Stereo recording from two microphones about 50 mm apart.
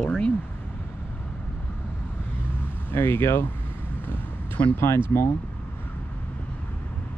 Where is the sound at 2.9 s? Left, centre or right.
Left.